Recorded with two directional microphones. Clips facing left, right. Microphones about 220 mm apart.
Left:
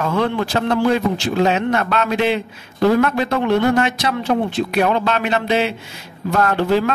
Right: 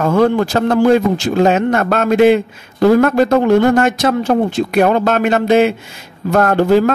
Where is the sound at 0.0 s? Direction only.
45° right (ahead or behind).